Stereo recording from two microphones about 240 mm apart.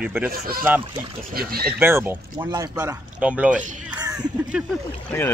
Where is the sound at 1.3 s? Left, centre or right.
Right.